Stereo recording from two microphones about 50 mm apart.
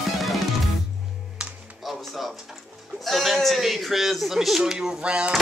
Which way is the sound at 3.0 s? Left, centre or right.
Centre.